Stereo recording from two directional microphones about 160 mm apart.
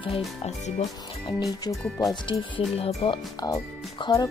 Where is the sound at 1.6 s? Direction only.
25° left (ahead or behind).